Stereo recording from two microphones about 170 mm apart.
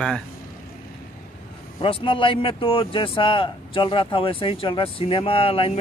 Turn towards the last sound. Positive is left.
turn(degrees=35)  # may be behind; listen again after turning